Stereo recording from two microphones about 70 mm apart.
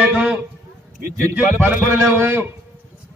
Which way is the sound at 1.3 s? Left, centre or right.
Right.